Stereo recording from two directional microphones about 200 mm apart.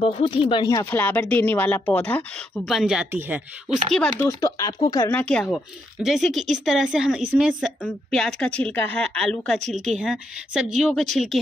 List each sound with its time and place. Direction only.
0.0 s speech: 30° left (ahead or behind); by 3.8 s 5° right (ahead or behind)
4.2 s speech: 15° left (ahead or behind)
5.1 s a woman's voice: 5° left (ahead or behind)